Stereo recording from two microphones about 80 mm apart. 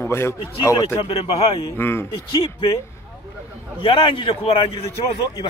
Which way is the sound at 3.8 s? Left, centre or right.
Left.